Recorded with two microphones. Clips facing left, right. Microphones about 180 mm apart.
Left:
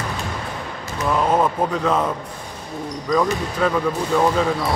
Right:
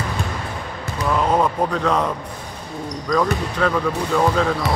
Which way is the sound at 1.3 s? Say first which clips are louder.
Even; 5° left (ahead or behind).